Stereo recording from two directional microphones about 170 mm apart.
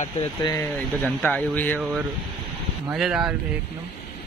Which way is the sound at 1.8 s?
5° right (ahead or behind).